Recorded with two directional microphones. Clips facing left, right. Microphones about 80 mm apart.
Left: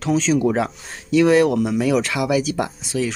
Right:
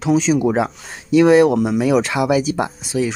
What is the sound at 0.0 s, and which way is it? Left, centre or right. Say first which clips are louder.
Speech: right 2 dB; centre.